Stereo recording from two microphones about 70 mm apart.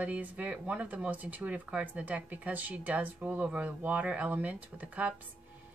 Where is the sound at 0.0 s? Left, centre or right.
Right.